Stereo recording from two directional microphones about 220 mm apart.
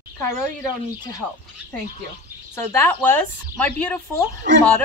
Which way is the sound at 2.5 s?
10° left (ahead or behind).